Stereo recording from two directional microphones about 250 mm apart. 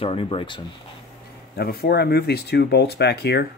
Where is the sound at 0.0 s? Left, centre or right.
Left.